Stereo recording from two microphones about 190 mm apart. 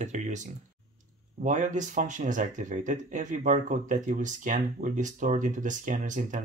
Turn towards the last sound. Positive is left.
turn(degrees=-40)  # may be behind; listen again after turning